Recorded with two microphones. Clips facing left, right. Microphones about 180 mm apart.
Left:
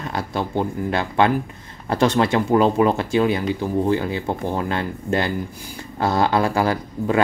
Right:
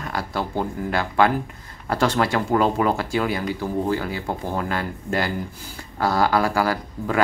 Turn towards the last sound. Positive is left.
turn(degrees=20)  # may be behind; listen again after turning